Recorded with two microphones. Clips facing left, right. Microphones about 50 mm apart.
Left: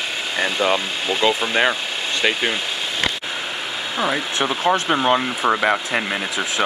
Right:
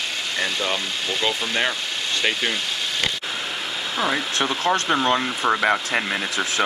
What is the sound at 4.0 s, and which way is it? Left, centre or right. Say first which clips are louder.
Speech: left 2 dB; centre.